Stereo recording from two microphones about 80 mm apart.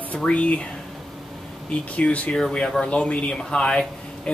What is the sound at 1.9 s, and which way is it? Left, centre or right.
Speech, centre.